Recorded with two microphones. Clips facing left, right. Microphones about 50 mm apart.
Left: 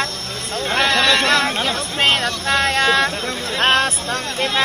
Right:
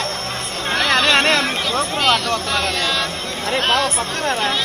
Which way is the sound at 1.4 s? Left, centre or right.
Left.